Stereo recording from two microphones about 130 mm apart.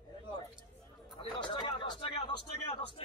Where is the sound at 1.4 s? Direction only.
40° left (ahead or behind).